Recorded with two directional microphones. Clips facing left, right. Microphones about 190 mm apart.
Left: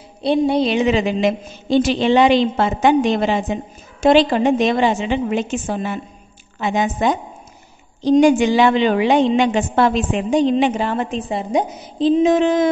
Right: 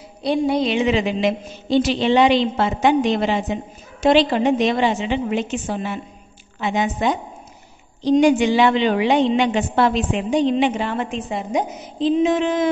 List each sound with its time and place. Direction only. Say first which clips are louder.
0.2 s a woman's voice: left 3 dB; 25° left (ahead or behind)